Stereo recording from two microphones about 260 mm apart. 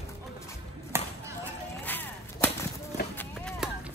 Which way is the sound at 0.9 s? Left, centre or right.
Centre.